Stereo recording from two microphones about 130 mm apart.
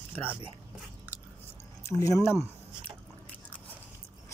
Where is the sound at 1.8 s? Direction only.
25° left (ahead or behind).